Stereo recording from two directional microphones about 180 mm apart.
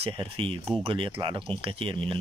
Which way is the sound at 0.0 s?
30° right (ahead or behind).